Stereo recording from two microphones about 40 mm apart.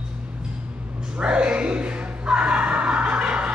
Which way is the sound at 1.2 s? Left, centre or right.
Right.